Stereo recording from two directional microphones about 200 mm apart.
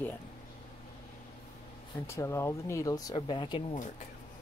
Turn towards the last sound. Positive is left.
turn(degrees=25)  # may be behind; listen again after turning